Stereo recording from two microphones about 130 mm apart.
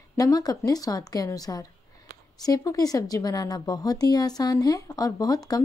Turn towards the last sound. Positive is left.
turn(degrees=30)  # may be behind; listen again after turning